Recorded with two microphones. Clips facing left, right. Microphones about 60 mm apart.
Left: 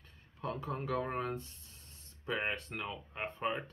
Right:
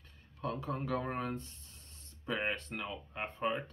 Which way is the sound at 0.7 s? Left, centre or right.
Centre.